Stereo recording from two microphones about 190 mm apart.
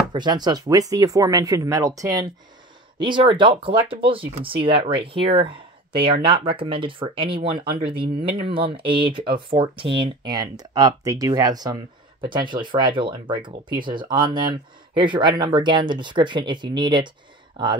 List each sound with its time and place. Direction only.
0.1 s speech: 20° right (ahead or behind)